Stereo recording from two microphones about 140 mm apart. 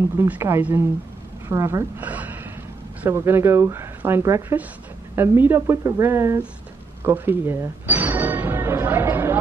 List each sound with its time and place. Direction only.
0.3 s a woman's voice: 15° right (ahead or behind)
7.0 s music: 15° right (ahead or behind)